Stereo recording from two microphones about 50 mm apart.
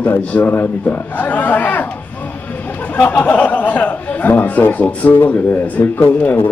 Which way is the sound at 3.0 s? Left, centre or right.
Left.